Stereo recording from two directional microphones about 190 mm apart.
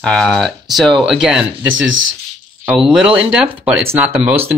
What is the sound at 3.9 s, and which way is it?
Speech, 10° right (ahead or behind).